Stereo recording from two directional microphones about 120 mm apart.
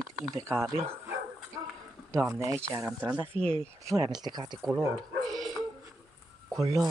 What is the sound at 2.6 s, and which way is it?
Speech, 20° right (ahead or behind).